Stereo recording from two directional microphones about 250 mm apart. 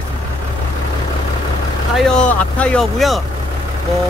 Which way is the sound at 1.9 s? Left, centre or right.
Centre.